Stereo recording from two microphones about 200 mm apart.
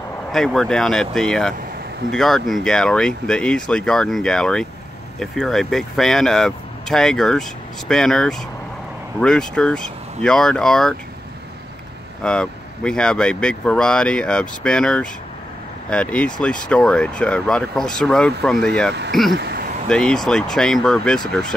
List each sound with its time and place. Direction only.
0.3 s speech: centre (ahead or behind)
12.2 s speech: 5° left (ahead or behind)
19.3 s a sound: 55° right (ahead or behind)
19.9 s speech: 5° left (ahead or behind)